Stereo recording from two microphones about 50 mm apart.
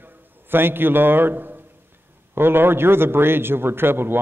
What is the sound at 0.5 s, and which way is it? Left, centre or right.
A man's voice, right.